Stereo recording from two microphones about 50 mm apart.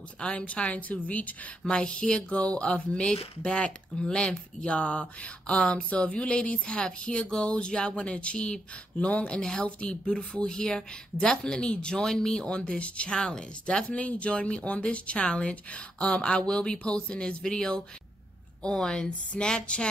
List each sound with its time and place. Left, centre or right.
0.2 s speech: left
1.6 s speech: centre